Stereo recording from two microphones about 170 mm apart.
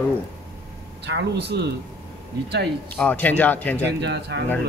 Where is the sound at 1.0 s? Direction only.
90° right.